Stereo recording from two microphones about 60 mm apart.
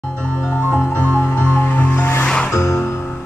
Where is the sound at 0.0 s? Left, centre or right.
Left.